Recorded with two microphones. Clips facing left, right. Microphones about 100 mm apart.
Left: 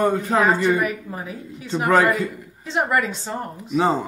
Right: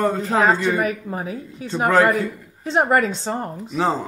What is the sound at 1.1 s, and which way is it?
Speech, 25° right (ahead or behind).